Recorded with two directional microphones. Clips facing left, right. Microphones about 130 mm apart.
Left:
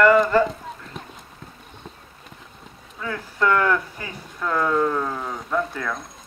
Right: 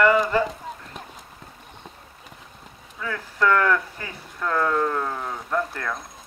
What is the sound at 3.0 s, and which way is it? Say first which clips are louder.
Speech: even; 25° left (ahead or behind).